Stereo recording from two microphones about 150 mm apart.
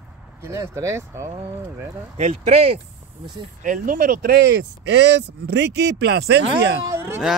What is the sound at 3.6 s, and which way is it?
Speech, 65° right (ahead or behind).